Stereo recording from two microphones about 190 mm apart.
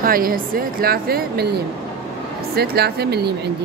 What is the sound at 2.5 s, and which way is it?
Speech, 55° right (ahead or behind).